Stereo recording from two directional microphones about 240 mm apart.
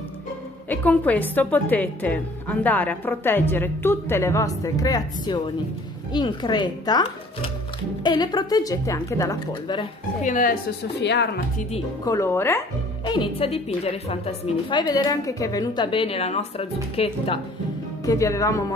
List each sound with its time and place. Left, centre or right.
0.7 s a woman's voice: centre
10.3 s a woman's voice: left
12.0 s speech: centre
18.0 s a woman's voice: centre